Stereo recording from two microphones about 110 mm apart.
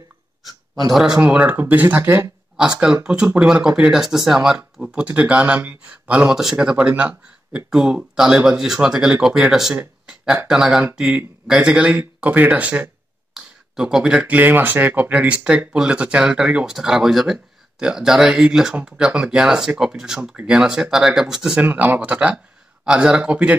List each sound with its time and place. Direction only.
0.9 s speech: 5° right (ahead or behind); by 2.3 s 20° right (ahead or behind)
2.5 s speech: 5° right (ahead or behind)
21.5 s speech: 15° right (ahead or behind)